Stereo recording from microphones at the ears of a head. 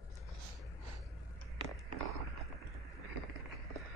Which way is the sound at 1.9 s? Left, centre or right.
Right.